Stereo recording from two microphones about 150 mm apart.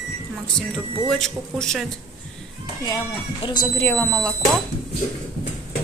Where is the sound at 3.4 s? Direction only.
30° left (ahead or behind).